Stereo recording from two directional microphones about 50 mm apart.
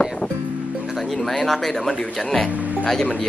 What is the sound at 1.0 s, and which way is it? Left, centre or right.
Speech, centre.